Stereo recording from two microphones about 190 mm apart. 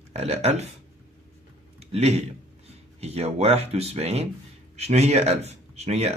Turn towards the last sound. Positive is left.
turn(degrees=-35)  # may be behind; listen again after turning